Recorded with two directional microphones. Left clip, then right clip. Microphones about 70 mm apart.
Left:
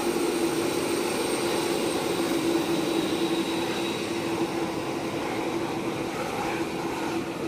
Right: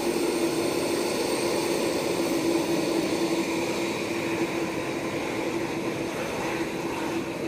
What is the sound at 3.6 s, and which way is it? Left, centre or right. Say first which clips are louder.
Vehicle: right 1 dB; left.